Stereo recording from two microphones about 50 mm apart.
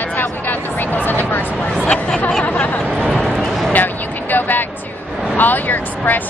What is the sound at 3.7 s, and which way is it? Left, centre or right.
Vehicle, left.